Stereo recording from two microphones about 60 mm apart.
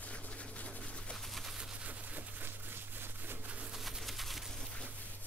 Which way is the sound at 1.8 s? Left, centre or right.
Right.